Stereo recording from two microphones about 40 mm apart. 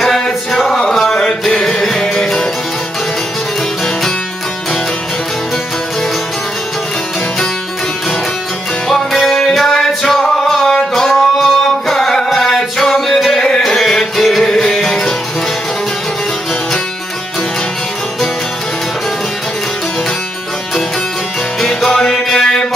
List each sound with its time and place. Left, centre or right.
0.0 s music: centre
0.9 s mantra: centre
1.2 s music: centre
8.8 s music: centre
10.7 s music: centre
11.1 s music: centre
14.7 s music: centre
21.5 s music: centre